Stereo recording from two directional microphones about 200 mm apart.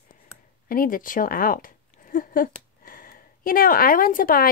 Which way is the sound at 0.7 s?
45° left (ahead or behind).